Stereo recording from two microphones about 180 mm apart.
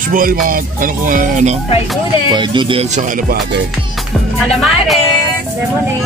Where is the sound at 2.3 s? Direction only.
25° right (ahead or behind).